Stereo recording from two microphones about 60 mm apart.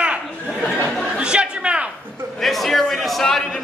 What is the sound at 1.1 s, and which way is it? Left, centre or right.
Chatter, centre.